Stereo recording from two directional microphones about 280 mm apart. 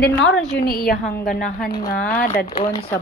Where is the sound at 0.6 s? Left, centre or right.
Left.